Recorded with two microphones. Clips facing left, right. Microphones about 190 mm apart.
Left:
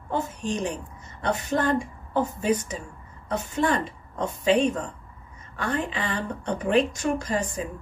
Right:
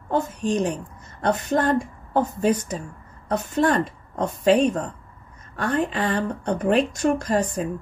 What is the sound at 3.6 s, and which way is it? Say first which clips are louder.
A woman's voice: right 4 dB; 45° right (ahead or behind).